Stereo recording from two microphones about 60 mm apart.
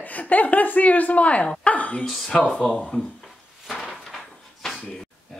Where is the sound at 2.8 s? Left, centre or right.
Centre.